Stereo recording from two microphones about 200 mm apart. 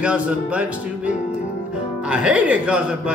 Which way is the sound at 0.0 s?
5° right (ahead or behind).